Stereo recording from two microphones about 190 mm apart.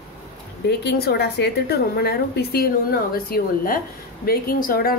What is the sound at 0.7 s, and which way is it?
A woman's voice, 60° left (ahead or behind).